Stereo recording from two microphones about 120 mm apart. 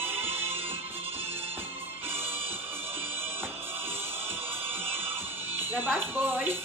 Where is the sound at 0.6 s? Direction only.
55° right (ahead or behind).